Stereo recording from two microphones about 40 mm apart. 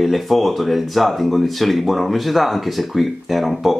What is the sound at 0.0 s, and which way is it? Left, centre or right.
Speech, centre.